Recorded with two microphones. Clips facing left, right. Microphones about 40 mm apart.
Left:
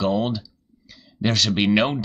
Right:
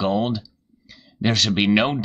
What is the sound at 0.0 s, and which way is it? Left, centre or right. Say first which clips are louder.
Speech: right 1 dB; centre.